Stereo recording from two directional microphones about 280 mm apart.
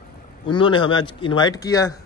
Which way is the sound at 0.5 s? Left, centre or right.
Centre.